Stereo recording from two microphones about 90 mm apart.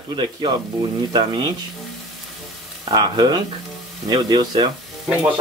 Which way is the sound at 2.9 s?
60° right (ahead or behind).